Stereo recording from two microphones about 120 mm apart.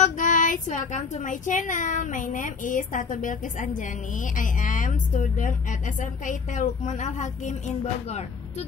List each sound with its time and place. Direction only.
0.0 s a woman's voice: 90° left; by 8.6 s 75° left (ahead or behind)